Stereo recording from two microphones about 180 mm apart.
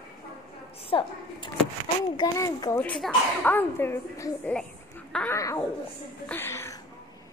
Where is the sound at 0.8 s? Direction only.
30° left (ahead or behind).